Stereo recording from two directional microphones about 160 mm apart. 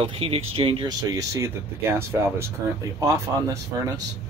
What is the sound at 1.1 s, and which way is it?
Speech, 20° right (ahead or behind).